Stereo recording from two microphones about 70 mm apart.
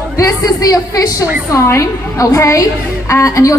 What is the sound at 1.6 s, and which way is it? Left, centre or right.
A woman's voice, left.